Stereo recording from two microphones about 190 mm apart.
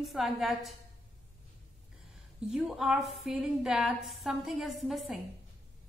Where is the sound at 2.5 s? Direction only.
5° right (ahead or behind).